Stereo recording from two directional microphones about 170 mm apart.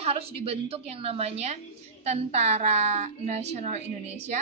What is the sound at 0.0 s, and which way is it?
A woman's voice, 35° right (ahead or behind).